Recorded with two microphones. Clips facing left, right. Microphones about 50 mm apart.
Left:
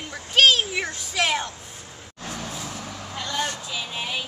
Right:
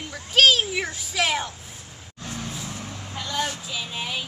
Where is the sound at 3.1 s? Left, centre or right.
Centre.